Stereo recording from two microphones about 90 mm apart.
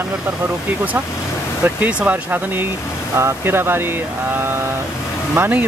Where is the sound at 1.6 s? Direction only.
20° right (ahead or behind).